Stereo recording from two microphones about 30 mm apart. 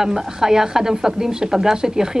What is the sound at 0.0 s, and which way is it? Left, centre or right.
Speech, centre.